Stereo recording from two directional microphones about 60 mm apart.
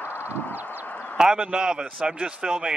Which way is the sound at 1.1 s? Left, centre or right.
Centre.